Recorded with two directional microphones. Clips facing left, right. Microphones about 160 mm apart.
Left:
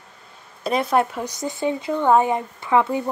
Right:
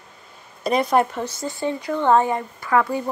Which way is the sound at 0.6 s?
Centre (ahead or behind).